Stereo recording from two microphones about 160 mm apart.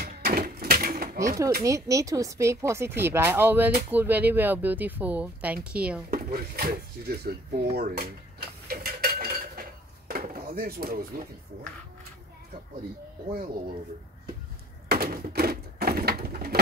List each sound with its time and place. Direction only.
0.0 s a sound: 70° right (ahead or behind)
1.6 s speech: 20° right (ahead or behind)
6.0 s speech: 65° right (ahead or behind)
7.7 s dishes: 75° right (ahead or behind)
14.9 s bird: 70° right (ahead or behind)